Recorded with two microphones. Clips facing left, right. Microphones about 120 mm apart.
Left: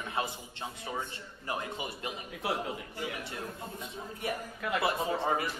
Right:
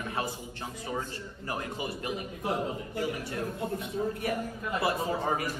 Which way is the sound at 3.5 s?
65° right (ahead or behind).